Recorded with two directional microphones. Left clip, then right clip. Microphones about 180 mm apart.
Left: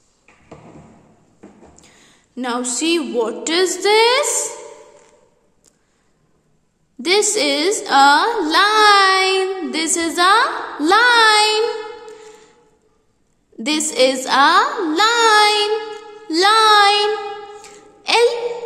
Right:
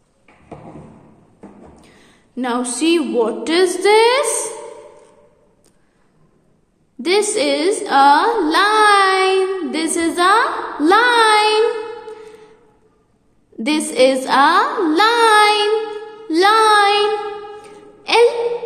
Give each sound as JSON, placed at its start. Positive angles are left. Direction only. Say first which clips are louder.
{"t": 1.8, "sound": "a woman's voice", "louder": "right 1 dB", "side_deg": 10}
{"t": 7.0, "sound": "a woman's voice", "louder": "even", "side_deg": 15}
{"t": 12.1, "sound": "music", "louder": "right 4 dB", "side_deg": 10}
{"t": 13.6, "sound": "a woman's voice", "louder": "right 2 dB", "side_deg": 10}
{"t": 17.6, "sound": "a sound", "louder": "right 2 dB", "side_deg": 20}